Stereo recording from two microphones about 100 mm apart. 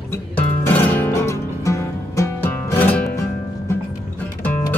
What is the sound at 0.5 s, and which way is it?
Music, 20° left (ahead or behind).